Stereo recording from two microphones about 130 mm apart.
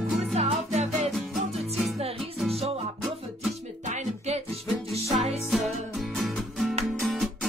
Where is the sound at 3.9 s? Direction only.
55° right (ahead or behind).